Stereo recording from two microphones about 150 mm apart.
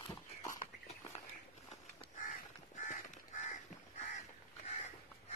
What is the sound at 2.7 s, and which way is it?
Crow, 55° left (ahead or behind).